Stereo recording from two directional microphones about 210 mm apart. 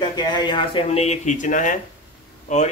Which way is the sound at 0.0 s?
20° left (ahead or behind).